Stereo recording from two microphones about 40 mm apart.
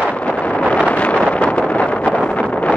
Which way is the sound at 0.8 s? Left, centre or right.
Left.